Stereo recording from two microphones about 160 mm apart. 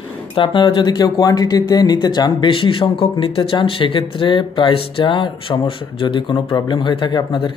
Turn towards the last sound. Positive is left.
turn(degrees=30)  # may be behind; listen again after turning